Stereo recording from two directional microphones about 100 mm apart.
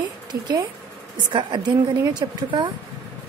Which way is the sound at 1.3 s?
50° right (ahead or behind).